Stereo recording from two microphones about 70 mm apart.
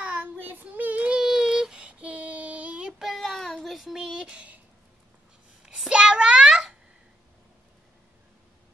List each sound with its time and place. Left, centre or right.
0.0 s child singing: right
1.2 s child singing: centre
2.9 s child singing: centre
5.6 s a sound: centre